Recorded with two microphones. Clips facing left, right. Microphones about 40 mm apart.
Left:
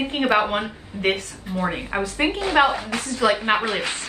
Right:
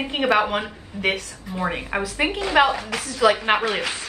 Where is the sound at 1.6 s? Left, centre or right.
Centre.